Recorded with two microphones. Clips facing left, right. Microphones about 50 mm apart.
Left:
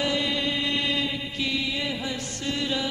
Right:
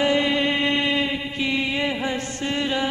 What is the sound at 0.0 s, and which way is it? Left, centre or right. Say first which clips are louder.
Mantra: right 6 dB; right.